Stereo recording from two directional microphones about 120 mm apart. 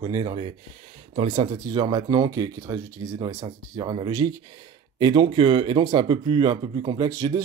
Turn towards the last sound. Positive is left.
turn(degrees=-30)  # may be behind; listen again after turning